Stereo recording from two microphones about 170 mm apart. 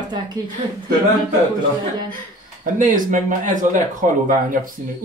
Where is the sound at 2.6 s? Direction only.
50° right (ahead or behind).